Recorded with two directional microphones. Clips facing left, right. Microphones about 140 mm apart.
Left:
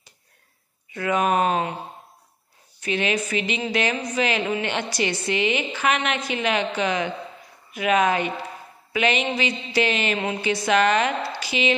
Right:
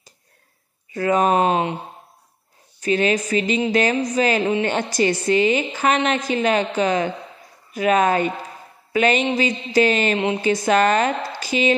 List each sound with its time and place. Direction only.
0.9 s a woman's voice: 40° right (ahead or behind)
2.8 s a woman's voice: 40° right (ahead or behind)